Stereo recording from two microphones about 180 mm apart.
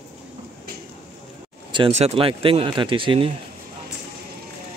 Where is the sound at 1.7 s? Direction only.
30° right (ahead or behind).